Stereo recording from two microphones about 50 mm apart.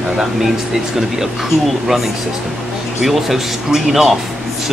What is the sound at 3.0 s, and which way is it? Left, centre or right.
Speech, centre.